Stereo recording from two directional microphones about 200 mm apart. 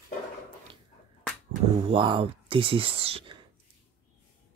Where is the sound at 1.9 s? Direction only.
25° right (ahead or behind).